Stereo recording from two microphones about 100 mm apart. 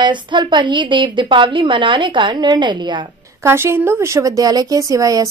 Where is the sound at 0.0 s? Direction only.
50° right (ahead or behind).